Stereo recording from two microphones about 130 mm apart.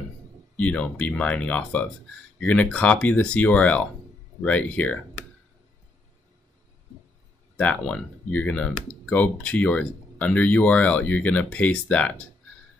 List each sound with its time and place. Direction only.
0.6 s speech: 10° left (ahead or behind)
7.5 s speech: 10° left (ahead or behind)